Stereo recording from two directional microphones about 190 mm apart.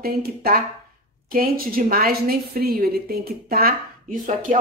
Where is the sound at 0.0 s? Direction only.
55° right (ahead or behind).